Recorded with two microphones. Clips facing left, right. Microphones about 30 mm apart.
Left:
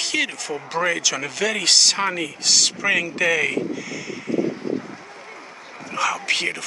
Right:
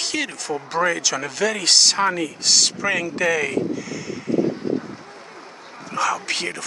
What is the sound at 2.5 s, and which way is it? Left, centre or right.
Speech, centre.